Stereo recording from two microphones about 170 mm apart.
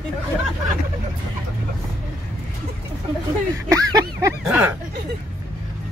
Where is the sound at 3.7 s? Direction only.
20° right (ahead or behind).